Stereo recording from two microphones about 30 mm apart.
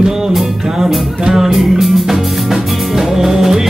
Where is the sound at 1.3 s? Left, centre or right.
Centre.